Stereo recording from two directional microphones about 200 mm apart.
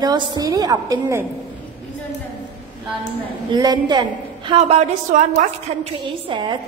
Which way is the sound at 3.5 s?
20° right (ahead or behind).